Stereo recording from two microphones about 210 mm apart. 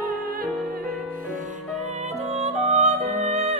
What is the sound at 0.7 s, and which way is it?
Music, 45° right (ahead or behind).